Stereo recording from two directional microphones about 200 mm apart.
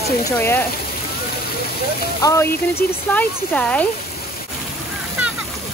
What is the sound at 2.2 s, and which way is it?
Speech, 15° left (ahead or behind).